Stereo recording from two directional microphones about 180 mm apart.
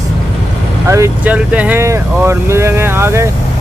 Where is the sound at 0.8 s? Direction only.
15° right (ahead or behind).